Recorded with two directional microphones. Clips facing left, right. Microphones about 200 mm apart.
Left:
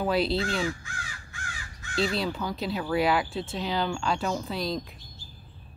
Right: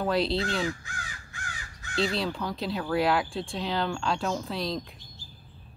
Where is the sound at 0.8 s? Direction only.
35° right (ahead or behind).